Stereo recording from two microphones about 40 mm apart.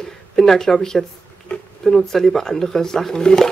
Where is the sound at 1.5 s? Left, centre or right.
Left.